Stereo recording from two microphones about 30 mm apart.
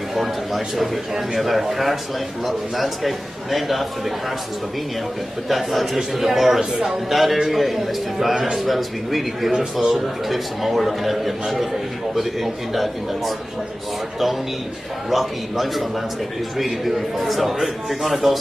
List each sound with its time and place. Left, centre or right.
0.1 s a man's voice: centre
5.5 s a man's voice: centre
15.0 s a man's voice: centre